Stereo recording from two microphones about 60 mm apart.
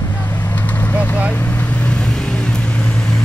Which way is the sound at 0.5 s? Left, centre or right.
Left.